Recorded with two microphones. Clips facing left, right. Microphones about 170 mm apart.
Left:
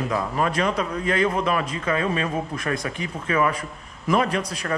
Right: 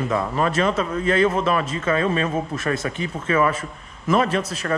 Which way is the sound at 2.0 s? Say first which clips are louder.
Right 3 dB; 30° right (ahead or behind).